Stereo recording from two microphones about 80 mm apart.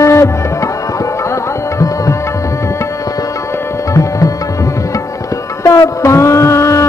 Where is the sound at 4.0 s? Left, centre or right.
Left.